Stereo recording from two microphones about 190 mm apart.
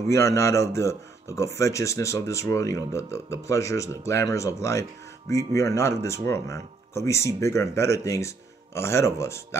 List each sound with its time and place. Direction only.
0.1 s speech: 15° left (ahead or behind)